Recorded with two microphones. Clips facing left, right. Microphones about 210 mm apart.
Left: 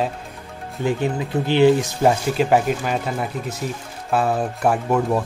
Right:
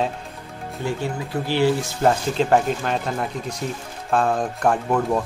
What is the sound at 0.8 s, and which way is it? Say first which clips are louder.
Speech: left 5 dB; 15° left (ahead or behind).